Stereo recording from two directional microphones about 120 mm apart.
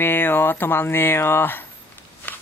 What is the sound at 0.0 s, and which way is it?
Speech, 20° left (ahead or behind).